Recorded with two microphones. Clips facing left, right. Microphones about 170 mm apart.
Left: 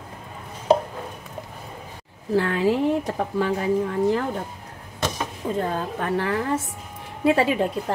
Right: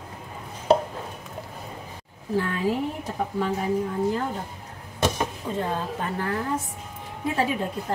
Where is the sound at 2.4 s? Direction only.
90° left.